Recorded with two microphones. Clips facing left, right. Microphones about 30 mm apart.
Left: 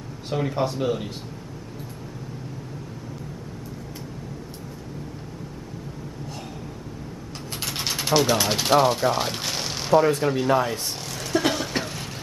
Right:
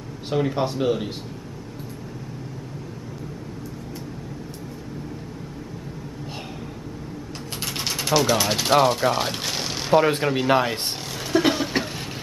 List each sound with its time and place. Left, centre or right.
0.3 s speech: centre
7.6 s a sound: centre
9.9 s speech: right
10.2 s speech: right
10.5 s speech: right
11.3 s vehicle: centre